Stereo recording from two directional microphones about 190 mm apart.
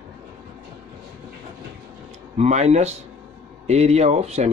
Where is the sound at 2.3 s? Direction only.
35° right (ahead or behind).